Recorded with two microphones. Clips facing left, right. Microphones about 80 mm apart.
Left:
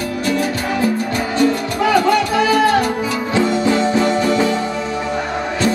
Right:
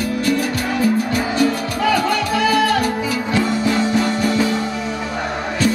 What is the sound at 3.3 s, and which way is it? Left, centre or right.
Music, left.